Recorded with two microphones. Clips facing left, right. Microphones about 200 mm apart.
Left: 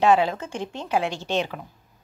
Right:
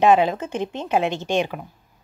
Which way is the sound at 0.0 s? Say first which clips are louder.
Right 3 dB; 20° right (ahead or behind).